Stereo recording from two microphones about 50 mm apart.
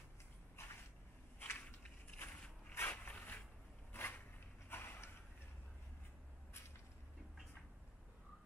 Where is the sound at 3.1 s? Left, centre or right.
Left.